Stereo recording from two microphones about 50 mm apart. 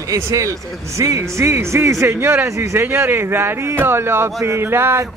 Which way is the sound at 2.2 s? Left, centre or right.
Right.